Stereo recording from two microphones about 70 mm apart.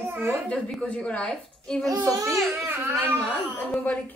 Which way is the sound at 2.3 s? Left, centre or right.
Centre.